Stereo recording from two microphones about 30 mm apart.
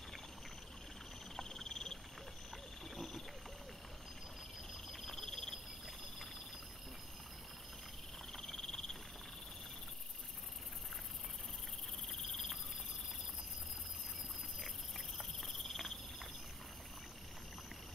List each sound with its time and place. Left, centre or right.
1.3 s frog: centre
2.9 s a sound: centre
4.9 s frog: centre
8.3 s frog: centre
12.1 s cricket: centre
15.1 s cricket: centre